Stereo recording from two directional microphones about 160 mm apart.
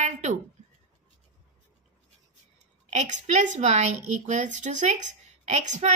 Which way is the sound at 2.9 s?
45° right (ahead or behind).